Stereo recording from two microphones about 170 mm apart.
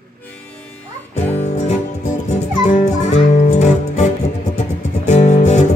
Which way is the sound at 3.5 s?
40° left (ahead or behind).